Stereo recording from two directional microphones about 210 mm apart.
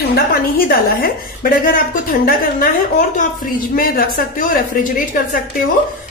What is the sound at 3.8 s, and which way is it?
A woman's voice, 45° left (ahead or behind).